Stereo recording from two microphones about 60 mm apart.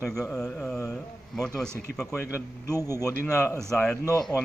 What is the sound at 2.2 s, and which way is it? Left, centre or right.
A man's voice, left.